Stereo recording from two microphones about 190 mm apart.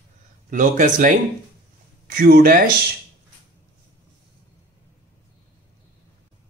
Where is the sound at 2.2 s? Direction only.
50° right (ahead or behind).